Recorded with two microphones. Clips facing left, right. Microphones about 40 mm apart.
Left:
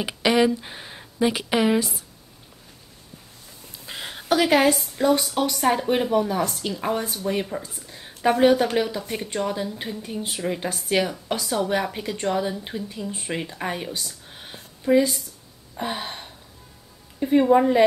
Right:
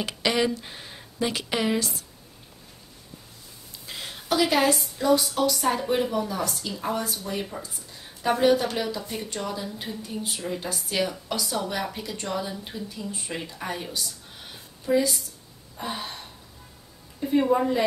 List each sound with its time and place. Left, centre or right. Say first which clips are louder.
0.0 s a woman's voice: left 5 dB; centre
3.8 s a woman's voice: left 3 dB; left
8.7 s speech: left 5 dB; left
9.0 s a woman's voice: left 5 dB; left
13.9 s a sound: even; left
15.8 s a woman's voice: left 4 dB; left
17.5 s speech: left 6 dB; left